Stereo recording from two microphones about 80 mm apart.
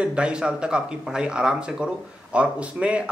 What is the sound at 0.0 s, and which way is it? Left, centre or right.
A man's voice, centre.